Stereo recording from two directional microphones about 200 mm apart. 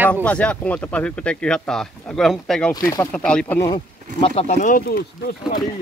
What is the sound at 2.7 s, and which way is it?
Speech, 15° left (ahead or behind).